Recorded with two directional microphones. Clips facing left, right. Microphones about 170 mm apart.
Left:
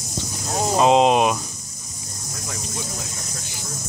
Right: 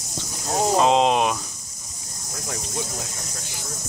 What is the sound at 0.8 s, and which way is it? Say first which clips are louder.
Speech: left 4 dB; 10° left (ahead or behind).